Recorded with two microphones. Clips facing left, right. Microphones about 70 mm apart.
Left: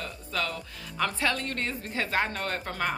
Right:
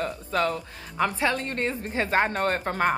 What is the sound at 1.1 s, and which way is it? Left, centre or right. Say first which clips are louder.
Speech: right 3 dB; right.